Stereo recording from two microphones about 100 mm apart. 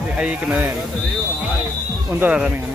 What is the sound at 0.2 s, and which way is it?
Speech, 10° right (ahead or behind).